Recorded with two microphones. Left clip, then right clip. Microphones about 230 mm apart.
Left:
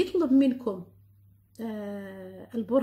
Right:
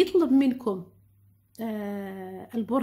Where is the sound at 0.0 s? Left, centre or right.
Right.